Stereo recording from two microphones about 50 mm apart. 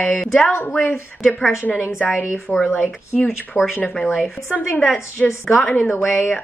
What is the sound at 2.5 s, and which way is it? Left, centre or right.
Speech, left.